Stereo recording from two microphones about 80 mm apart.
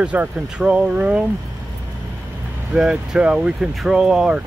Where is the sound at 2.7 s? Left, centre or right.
Centre.